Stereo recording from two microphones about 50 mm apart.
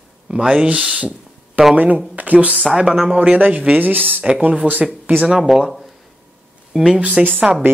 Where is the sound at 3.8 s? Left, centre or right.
Right.